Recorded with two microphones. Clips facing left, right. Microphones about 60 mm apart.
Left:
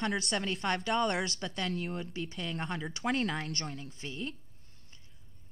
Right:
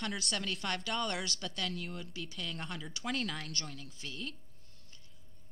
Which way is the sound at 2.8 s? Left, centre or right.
Left.